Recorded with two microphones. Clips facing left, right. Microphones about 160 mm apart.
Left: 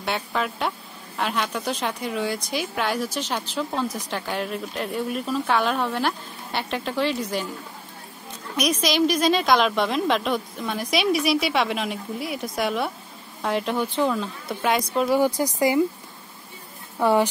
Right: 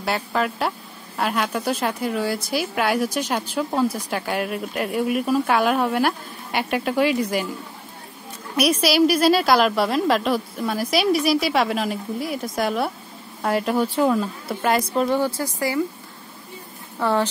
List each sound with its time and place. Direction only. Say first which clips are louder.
0.0 s a woman's voice: right 3 dB; centre (ahead or behind)
8.5 s a woman's voice: right 4 dB; 10° right (ahead or behind)
15.1 s speech: left 2 dB; 15° left (ahead or behind)
17.0 s speech: left 2 dB; 10° left (ahead or behind)